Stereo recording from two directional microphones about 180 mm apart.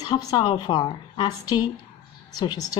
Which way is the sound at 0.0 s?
20° left (ahead or behind).